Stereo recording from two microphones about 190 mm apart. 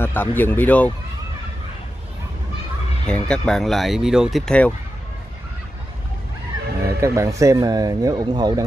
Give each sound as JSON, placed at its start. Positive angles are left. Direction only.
{"t": 0.0, "sound": "speech", "side_deg": 10}
{"t": 3.1, "sound": "speech", "side_deg": 5}
{"t": 7.0, "sound": "speech", "side_deg": -15}